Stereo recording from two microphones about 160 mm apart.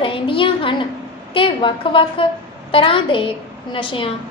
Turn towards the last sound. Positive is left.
turn(degrees=35)  # may be behind; listen again after turning